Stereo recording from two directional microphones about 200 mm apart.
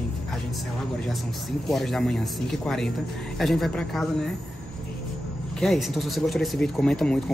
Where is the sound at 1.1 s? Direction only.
Centre (ahead or behind).